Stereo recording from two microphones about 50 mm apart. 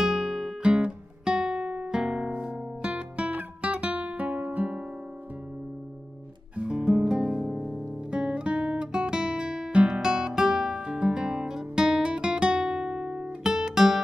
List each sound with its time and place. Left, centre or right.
0.0 s music: centre
0.6 s guitar: centre
6.5 s music: centre